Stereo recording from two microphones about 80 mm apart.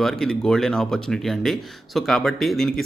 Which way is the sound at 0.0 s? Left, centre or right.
Centre.